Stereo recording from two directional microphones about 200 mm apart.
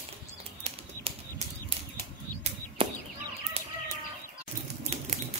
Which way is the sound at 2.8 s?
30° right (ahead or behind).